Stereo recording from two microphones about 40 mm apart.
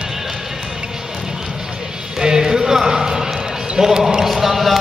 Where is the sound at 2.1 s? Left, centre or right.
Centre.